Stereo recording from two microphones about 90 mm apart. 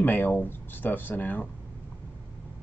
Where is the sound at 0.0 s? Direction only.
20° left (ahead or behind).